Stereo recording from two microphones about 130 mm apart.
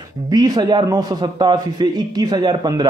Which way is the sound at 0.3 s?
35° right (ahead or behind).